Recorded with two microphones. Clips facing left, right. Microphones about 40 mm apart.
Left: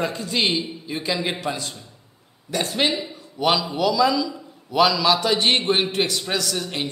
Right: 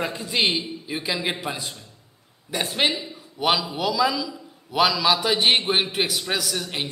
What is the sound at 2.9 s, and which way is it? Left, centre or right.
Speech, centre.